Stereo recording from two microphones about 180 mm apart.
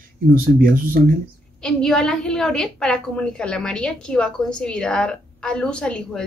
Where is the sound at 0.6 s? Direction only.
50° right (ahead or behind).